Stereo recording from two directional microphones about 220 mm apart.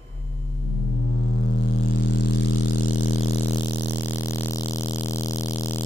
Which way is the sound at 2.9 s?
65° left (ahead or behind).